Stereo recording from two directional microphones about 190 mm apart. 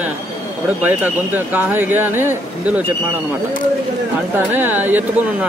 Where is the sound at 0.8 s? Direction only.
10° right (ahead or behind).